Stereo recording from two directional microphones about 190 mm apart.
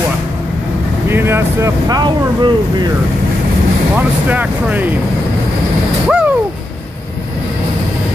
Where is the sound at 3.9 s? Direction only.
10° right (ahead or behind).